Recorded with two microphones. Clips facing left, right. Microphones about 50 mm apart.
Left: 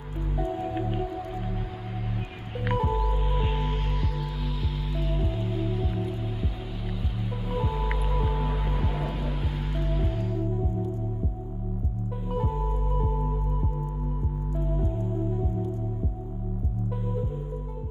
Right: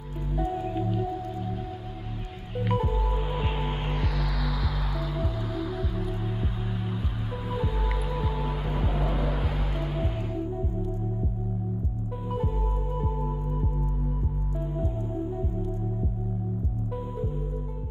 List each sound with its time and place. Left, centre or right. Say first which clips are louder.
2.5 s music: even; centre
3.3 s music: left 1 dB; centre
9.0 s vehicle: right 3 dB; right
9.5 s music: even; centre